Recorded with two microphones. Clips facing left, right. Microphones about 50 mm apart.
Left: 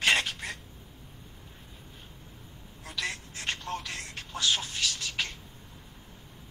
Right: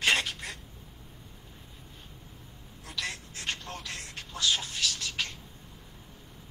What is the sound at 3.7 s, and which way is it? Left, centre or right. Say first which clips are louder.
Music: left 3 dB; left.